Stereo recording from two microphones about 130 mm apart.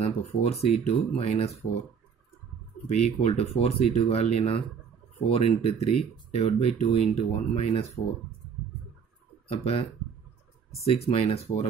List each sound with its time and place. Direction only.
0.0 s speech: 55° left (ahead or behind)
2.9 s speech: 55° left (ahead or behind)
9.5 s speech: 50° left (ahead or behind)
10.9 s speech: 50° left (ahead or behind)